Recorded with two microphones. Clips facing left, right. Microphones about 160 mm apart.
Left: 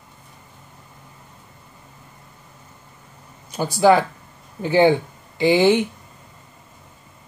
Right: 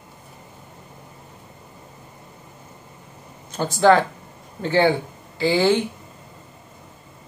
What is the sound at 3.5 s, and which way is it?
Speech, 10° left (ahead or behind).